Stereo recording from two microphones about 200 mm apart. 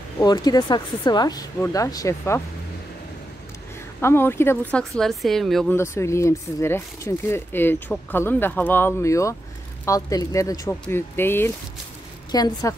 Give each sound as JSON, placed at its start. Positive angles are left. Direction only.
{"t": 0.2, "sound": "speech", "side_deg": 20}
{"t": 4.0, "sound": "speech", "side_deg": 10}
{"t": 5.8, "sound": "speech", "side_deg": 15}